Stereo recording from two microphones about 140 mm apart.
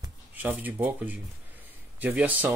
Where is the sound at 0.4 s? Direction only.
10° right (ahead or behind).